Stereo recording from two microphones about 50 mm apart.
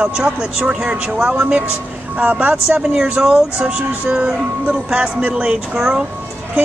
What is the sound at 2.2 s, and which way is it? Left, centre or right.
Speech, right.